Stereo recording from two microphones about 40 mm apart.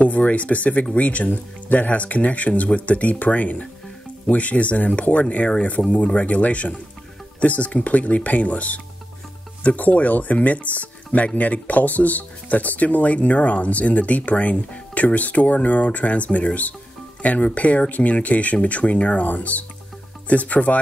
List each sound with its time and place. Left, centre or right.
0.0 s speech: left
5.8 s speech: centre
6.1 s speech: left